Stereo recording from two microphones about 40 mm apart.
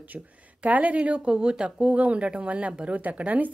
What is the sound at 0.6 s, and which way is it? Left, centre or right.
Speech, right.